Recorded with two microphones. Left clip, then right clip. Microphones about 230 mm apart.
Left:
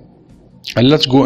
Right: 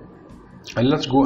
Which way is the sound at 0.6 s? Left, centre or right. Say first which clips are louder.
Left 8 dB; left.